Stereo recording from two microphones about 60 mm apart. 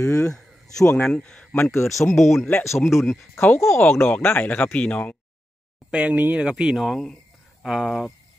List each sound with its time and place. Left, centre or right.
0.0 s speech: left
0.3 s a sound: centre
1.0 s speech: centre
1.5 s speech: left
2.0 s speech: centre
2.6 s speech: left
2.9 s speech: centre
3.3 s speech: left
4.1 s speech: left
5.9 s speech: right
6.5 s speech: centre